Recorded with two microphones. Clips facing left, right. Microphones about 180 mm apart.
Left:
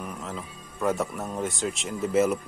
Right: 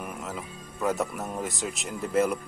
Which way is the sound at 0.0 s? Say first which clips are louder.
Even; 5° right (ahead or behind).